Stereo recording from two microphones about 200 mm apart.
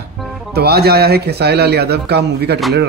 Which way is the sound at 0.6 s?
50° right (ahead or behind).